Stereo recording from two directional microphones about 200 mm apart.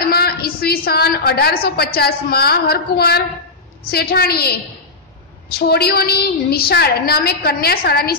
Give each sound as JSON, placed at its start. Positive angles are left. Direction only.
{"t": 0.0, "sound": "a woman's voice", "side_deg": 50}
{"t": 5.7, "sound": "a woman's voice", "side_deg": 50}